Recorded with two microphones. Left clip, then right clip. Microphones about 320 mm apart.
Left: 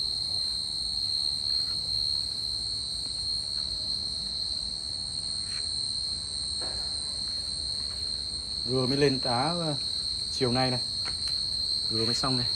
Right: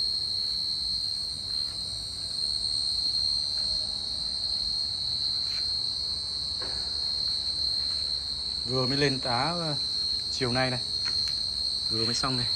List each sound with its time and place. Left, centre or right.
8.7 s speech: centre